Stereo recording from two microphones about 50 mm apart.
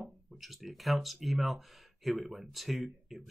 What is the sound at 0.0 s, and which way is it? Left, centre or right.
Speech, centre.